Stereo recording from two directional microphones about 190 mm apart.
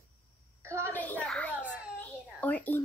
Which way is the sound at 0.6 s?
15° right (ahead or behind).